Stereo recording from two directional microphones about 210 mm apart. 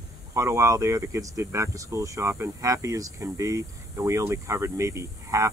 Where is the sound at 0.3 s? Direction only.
15° right (ahead or behind).